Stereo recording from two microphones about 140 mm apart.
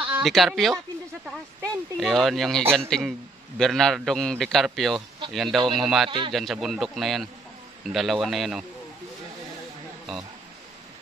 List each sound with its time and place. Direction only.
0.2 s a man's voice: centre (ahead or behind)
6.0 s a man's voice: 35° right (ahead or behind)
6.3 s a man's voice: centre (ahead or behind)